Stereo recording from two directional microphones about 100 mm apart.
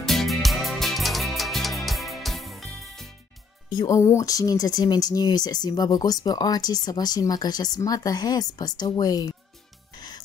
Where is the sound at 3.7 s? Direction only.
35° left (ahead or behind).